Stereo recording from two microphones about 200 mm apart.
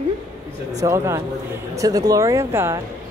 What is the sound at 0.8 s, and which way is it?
A woman's voice, 15° right (ahead or behind).